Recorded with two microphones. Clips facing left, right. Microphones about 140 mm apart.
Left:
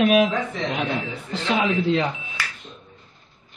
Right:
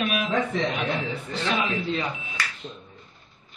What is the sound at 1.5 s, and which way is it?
Speech, 85° left.